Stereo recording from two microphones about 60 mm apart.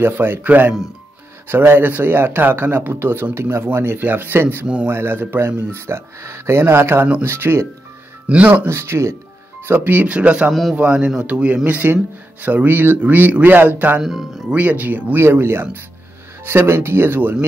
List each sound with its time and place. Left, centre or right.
0.0 s speech: right
1.8 s speech: right
5.7 s speech: right
8.3 s speech: right
8.6 s speech: right
9.7 s speech: right
10.5 s speech: centre
10.8 s speech: centre
14.0 s speech: centre
14.5 s speech: right
15.2 s speech: right